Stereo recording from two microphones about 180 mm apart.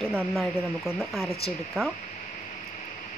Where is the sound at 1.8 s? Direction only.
Centre (ahead or behind).